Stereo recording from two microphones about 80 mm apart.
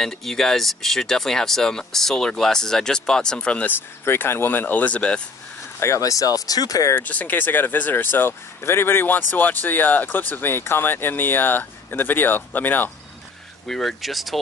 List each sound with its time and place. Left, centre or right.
0.0 s speech: centre
4.0 s speech: left; by 5.2 s centre
5.8 s speech: left
7.0 s speech: left
13.7 s speech: centre